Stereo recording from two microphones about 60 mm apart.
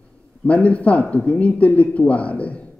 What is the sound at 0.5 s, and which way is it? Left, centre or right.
A man's voice, left.